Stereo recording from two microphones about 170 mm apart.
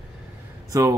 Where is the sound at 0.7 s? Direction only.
20° right (ahead or behind).